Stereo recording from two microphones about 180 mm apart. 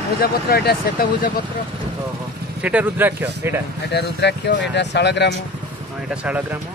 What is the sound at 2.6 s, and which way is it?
Speech, 10° right (ahead or behind).